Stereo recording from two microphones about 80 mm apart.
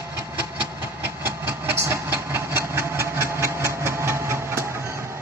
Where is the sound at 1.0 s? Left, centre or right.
Right.